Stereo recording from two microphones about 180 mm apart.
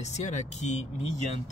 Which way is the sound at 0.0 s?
40° left (ahead or behind).